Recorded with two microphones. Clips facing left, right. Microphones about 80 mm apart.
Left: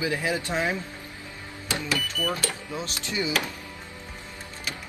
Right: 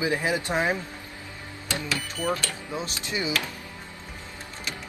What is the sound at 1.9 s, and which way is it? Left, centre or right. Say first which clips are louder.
Speech: right 1 dB; right.